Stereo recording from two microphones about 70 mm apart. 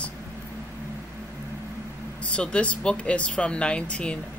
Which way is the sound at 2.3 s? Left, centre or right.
Centre.